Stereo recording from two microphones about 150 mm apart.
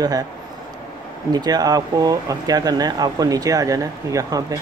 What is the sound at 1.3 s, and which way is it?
Speech, 25° right (ahead or behind).